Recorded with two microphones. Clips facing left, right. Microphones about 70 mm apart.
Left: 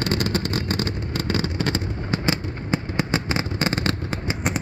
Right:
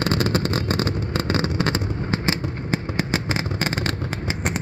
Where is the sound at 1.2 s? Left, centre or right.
Right.